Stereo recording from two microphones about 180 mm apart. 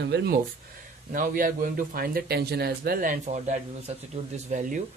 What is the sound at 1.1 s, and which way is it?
A man's voice, 50° right (ahead or behind).